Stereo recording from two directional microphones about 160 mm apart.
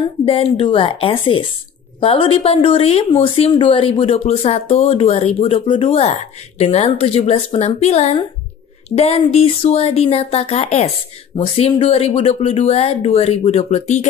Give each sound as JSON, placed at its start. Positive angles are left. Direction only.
{"t": 0.2, "sound": "speech", "side_deg": 35}